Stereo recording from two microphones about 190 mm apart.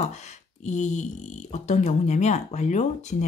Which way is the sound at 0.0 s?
40° left (ahead or behind).